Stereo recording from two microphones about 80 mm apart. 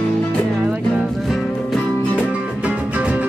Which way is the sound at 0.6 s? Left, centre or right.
Centre.